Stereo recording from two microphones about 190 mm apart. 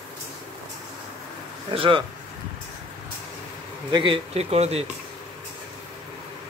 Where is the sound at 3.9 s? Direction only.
25° right (ahead or behind).